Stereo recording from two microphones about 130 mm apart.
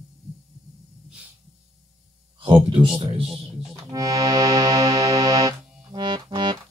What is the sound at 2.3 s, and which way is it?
Speech, 40° right (ahead or behind).